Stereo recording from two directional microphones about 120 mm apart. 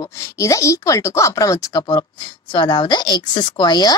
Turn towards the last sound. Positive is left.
turn(degrees=35)  # may be behind; listen again after turning